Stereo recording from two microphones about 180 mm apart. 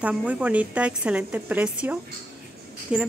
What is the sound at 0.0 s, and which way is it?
A woman's voice, 5° right (ahead or behind).